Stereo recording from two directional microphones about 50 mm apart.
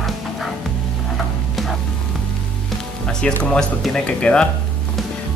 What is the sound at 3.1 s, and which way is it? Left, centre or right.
Music, centre.